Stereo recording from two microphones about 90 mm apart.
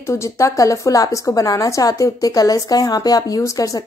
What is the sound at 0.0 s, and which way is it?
A woman's voice, 30° left (ahead or behind).